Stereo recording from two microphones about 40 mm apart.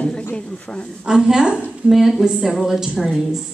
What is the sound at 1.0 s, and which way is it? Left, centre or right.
A woman's voice, centre.